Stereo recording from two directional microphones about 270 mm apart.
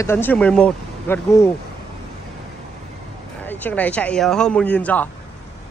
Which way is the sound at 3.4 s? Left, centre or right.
Centre.